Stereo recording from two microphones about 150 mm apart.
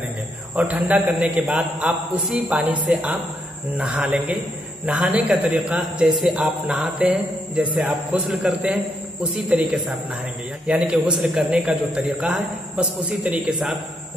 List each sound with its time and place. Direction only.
0.6 s a man's voice: 10° right (ahead or behind)